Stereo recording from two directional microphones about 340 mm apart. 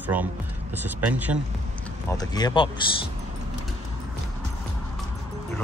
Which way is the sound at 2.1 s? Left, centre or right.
Centre.